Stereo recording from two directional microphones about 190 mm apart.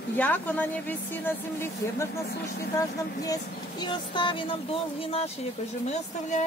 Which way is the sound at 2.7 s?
20° left (ahead or behind).